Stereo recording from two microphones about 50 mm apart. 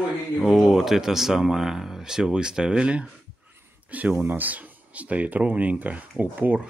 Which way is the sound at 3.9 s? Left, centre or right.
Right.